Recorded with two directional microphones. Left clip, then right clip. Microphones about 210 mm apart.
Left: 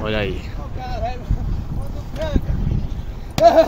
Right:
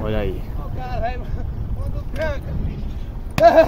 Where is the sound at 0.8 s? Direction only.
25° left (ahead or behind).